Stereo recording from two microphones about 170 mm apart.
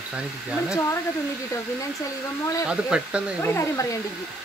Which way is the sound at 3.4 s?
15° left (ahead or behind).